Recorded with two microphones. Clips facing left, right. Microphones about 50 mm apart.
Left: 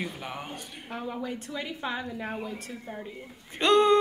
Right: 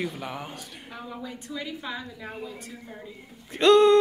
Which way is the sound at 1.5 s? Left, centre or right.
Left.